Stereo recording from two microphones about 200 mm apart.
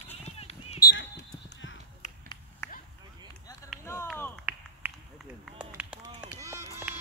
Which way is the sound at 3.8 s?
15° left (ahead or behind).